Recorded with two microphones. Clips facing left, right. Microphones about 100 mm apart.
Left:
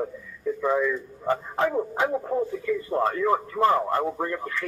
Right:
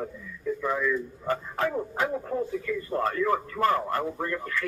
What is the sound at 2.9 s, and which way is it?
Speech, 25° left (ahead or behind).